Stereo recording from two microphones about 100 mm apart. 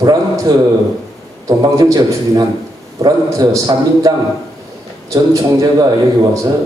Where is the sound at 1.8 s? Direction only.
40° right (ahead or behind).